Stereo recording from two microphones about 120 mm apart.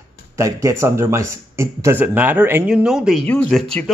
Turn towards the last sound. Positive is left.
turn(degrees=5)  # may be behind; listen again after turning